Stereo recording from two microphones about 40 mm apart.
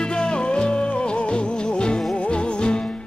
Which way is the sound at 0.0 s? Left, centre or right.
Left.